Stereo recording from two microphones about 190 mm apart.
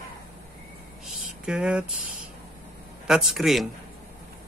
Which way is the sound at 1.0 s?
Centre (ahead or behind).